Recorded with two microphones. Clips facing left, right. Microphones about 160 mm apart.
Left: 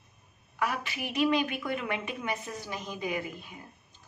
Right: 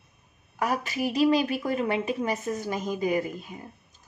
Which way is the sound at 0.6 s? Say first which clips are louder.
Right 5 dB; 40° right (ahead or behind).